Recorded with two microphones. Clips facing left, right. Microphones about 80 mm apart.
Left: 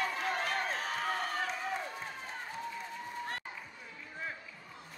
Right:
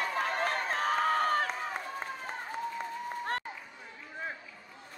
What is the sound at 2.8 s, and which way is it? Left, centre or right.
Applause, right.